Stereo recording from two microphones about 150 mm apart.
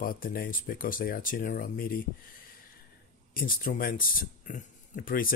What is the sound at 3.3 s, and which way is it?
Speech, 70° left (ahead or behind).